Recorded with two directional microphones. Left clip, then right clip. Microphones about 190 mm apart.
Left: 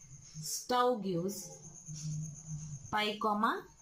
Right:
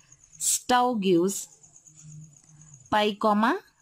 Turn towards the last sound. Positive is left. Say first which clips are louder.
# right 9 dB
turn(degrees=-55)  # may be behind; listen again after turning